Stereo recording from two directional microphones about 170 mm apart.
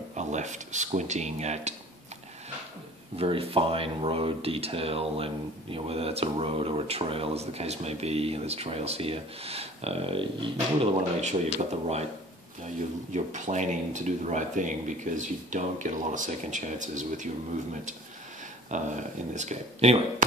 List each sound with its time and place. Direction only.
0.1 s speech: 45° right (ahead or behind)
3.2 s speech: 35° right (ahead or behind)
13.1 s speech: 45° right (ahead or behind)
18.7 s speech: 45° right (ahead or behind)